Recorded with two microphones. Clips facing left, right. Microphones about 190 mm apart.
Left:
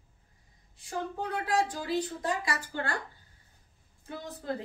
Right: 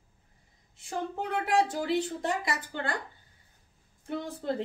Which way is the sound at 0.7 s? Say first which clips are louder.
Right 1 dB; 25° right (ahead or behind).